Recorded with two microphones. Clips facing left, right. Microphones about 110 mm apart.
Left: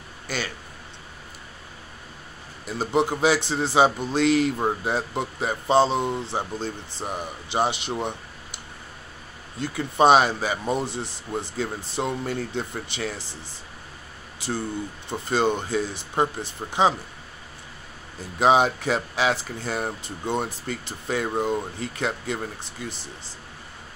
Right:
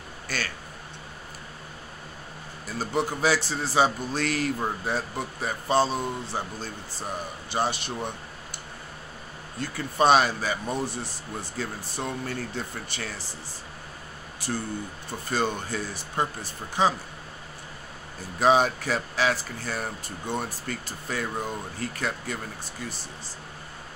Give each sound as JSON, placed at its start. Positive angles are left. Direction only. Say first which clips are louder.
{"t": 0.3, "sound": "speech", "louder": "left 3 dB", "side_deg": 15}
{"t": 2.6, "sound": "a man's voice", "louder": "left 5 dB", "side_deg": 20}
{"t": 9.6, "sound": "a man's voice", "louder": "left 4 dB", "side_deg": 20}
{"t": 14.4, "sound": "a man's voice", "louder": "left 3 dB", "side_deg": 20}
{"t": 18.4, "sound": "a man's voice", "louder": "left 2 dB", "side_deg": 20}